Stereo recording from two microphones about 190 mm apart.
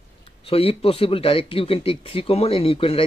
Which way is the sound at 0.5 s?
30° left (ahead or behind).